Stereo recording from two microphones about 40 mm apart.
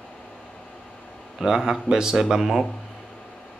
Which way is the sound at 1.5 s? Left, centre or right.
Centre.